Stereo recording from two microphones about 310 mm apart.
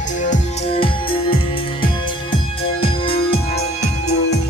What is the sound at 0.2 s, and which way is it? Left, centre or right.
Music, left.